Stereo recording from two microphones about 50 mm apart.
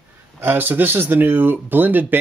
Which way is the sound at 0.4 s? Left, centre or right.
Right.